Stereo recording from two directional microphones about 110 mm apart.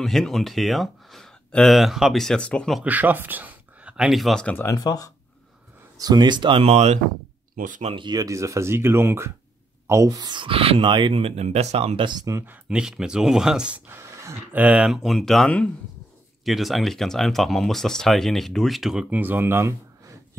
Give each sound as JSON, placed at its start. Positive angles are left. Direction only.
{"t": 0.0, "sound": "speech", "side_deg": 5}
{"t": 2.8, "sound": "speech", "side_deg": -15}
{"t": 4.6, "sound": "speech", "side_deg": 35}
{"t": 5.9, "sound": "speech", "side_deg": -35}
{"t": 6.6, "sound": "speech", "side_deg": -90}
{"t": 7.9, "sound": "speech", "side_deg": -45}
{"t": 12.3, "sound": "speech", "side_deg": -25}
{"t": 12.6, "sound": "speech", "side_deg": -5}
{"t": 14.5, "sound": "speech", "side_deg": -15}